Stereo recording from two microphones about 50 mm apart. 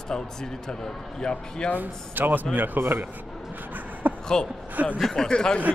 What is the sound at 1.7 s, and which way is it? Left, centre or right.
Speech, right.